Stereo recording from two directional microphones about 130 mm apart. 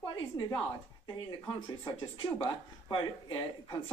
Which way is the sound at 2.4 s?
40° left (ahead or behind).